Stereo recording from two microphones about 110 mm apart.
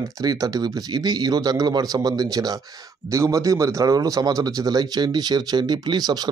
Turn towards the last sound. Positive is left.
turn(degrees=-35)  # may be behind; listen again after turning